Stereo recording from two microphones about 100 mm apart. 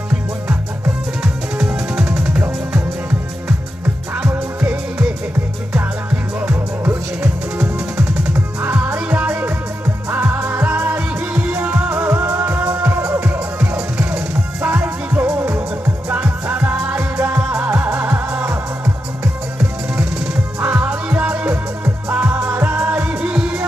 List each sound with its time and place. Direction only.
0.1 s music: 15° right (ahead or behind)
1.2 s music: 5° right (ahead or behind)
4.1 s music: 15° right (ahead or behind)
8.3 s music: 25° right (ahead or behind)
14.8 s music: 15° right (ahead or behind)
20.6 s music: 15° right (ahead or behind)